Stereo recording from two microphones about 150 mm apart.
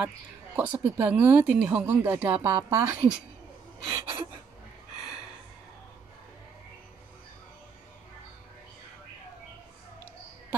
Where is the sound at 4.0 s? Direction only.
35° right (ahead or behind).